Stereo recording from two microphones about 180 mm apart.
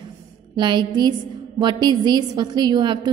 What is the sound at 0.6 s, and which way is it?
A woman's voice, 25° right (ahead or behind).